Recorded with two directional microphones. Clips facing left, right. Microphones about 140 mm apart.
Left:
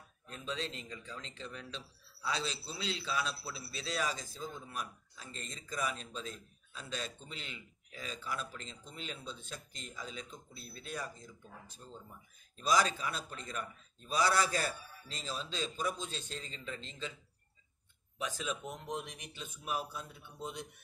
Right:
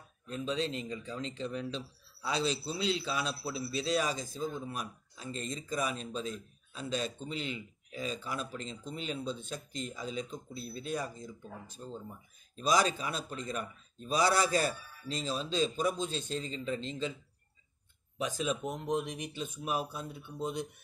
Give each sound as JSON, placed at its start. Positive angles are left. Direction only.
{"t": 0.3, "sound": "speech", "side_deg": -20}
{"t": 18.1, "sound": "speech", "side_deg": -20}